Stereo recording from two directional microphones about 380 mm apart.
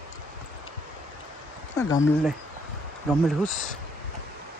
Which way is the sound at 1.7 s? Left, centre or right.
Centre.